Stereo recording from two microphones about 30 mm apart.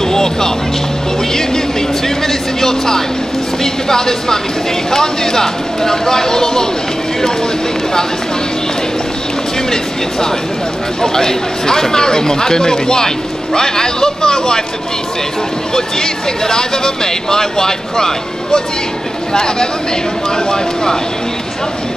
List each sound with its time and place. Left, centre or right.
0.0 s music: centre
2.0 s vehicle: centre
3.6 s speech: centre
11.0 s speech: centre
15.7 s speech: centre